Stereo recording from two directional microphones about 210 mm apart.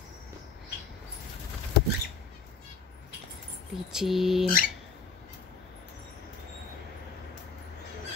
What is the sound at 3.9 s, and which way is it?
Speech, centre (ahead or behind).